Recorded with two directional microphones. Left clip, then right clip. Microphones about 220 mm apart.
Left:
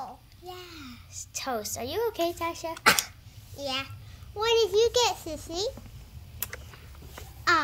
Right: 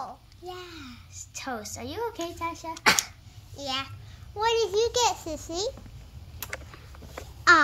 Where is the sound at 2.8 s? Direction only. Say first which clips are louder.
Even; 10° left (ahead or behind).